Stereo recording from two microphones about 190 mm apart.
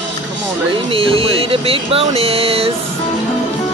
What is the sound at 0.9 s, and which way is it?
Speech, 30° right (ahead or behind).